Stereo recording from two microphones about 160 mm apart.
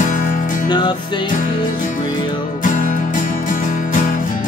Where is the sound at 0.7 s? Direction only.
30° left (ahead or behind).